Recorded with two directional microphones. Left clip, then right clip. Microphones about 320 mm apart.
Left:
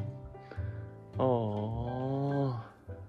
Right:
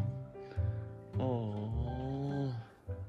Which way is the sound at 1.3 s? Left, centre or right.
Centre.